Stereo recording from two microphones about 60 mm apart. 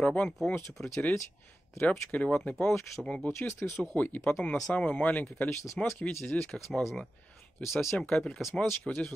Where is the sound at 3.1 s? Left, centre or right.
Left.